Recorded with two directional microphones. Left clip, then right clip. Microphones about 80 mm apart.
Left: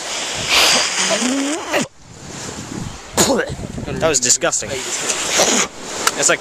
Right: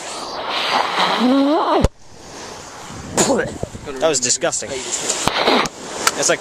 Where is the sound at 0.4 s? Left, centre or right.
Left.